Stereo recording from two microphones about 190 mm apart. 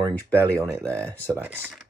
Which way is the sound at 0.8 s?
10° left (ahead or behind).